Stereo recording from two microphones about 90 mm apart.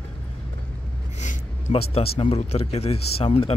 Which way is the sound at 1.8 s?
90° left.